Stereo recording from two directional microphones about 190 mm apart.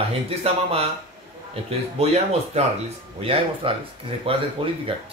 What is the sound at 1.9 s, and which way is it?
A man's voice, 35° right (ahead or behind).